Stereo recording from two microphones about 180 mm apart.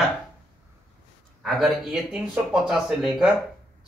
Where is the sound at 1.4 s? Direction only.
Centre (ahead or behind).